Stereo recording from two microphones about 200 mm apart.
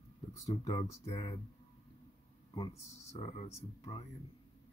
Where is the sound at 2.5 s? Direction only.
20° left (ahead or behind).